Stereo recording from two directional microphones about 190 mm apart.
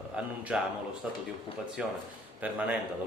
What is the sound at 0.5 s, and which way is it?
A man's voice, 5° right (ahead or behind).